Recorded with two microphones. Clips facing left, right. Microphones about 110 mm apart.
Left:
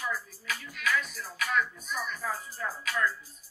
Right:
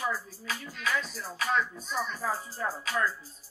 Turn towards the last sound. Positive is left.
turn(degrees=-30)  # may be behind; listen again after turning